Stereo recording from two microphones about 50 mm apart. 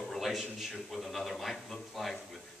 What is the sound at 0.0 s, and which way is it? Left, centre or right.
A man's voice, centre.